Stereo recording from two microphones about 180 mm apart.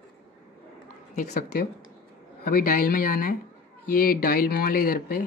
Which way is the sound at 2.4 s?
55° left (ahead or behind).